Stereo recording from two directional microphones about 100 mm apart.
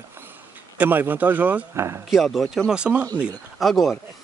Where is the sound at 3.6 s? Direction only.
Centre (ahead or behind).